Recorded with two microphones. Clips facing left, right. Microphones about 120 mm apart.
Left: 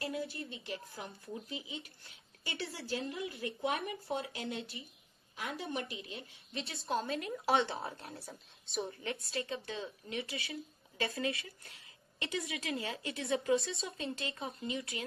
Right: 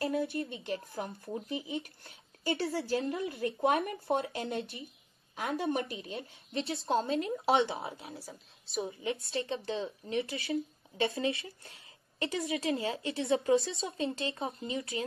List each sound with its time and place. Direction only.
0.0 s speech: 55° right (ahead or behind)
6.7 s speech: 25° right (ahead or behind)
7.8 s a woman's voice: centre (ahead or behind)
9.0 s speech: 25° right (ahead or behind)